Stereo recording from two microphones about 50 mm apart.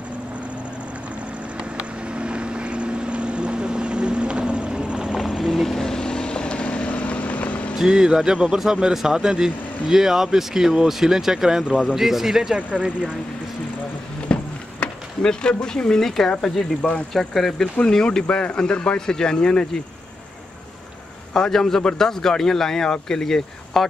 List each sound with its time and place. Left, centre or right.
2.1 s vehicle: right
5.4 s vehicle: centre; by 7.7 s left
7.7 s speech: centre
11.6 s speech: right
11.9 s speech: centre
12.5 s speech: right
14.2 s a sound: left
17.1 s a man's voice: centre
21.3 s a man's voice: centre